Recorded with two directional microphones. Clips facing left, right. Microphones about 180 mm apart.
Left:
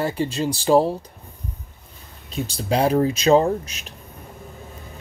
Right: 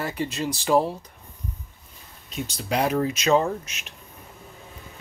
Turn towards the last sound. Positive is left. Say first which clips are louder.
# left 5 dB
turn(degrees=35)  # may be behind; listen again after turning